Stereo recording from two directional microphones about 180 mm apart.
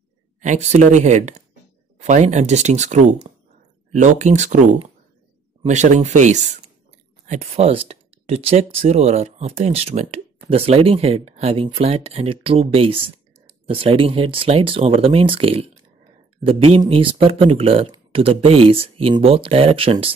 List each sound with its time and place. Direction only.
0.4 s speech: 40° right (ahead or behind)